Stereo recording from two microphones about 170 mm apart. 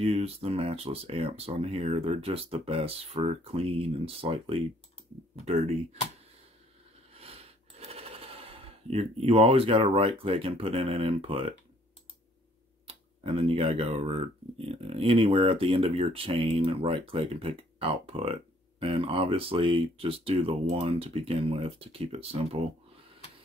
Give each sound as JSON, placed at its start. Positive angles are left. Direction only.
{"t": 0.0, "sound": "speech", "side_deg": -35}
{"t": 7.2, "sound": "coin", "side_deg": -35}
{"t": 12.8, "sound": "speech", "side_deg": -35}